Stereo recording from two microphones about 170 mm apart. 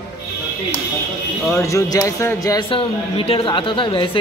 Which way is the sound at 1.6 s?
20° left (ahead or behind).